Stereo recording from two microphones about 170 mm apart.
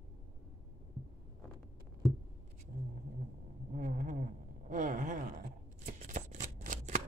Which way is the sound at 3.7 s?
50° right (ahead or behind).